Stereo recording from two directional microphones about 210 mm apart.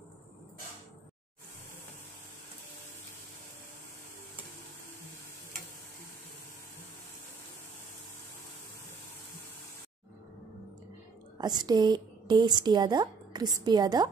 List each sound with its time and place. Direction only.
11.3 s a woman's voice: 20° right (ahead or behind)